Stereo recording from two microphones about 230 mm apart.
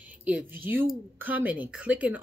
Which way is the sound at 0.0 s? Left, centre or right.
Centre.